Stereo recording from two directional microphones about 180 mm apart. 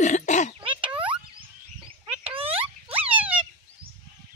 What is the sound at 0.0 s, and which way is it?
Cough, 40° left (ahead or behind).